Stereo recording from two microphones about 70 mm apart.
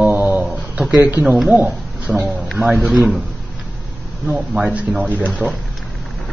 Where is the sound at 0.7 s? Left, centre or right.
Centre.